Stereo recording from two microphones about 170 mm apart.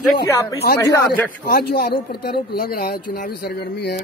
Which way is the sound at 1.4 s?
65° left (ahead or behind).